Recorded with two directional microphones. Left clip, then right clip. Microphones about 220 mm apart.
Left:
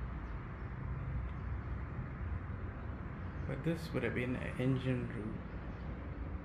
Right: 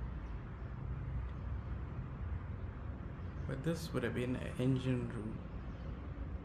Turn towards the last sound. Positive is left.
turn(degrees=-15)  # may be behind; listen again after turning